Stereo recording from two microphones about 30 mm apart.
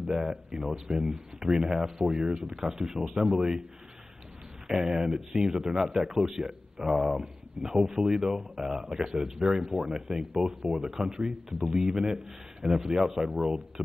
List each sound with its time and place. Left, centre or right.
0.0 s speech: right
2.6 s speech: centre
4.6 s speech: centre